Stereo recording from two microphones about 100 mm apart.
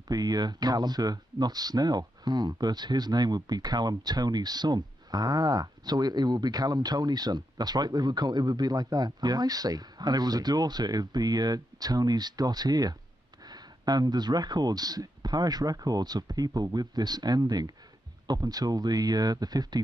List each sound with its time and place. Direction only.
0.1 s speech: 40° right (ahead or behind)